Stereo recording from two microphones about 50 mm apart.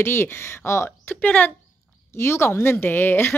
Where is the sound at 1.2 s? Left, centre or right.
Left.